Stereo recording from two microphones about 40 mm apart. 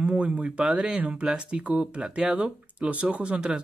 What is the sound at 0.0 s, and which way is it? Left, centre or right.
Speech, right.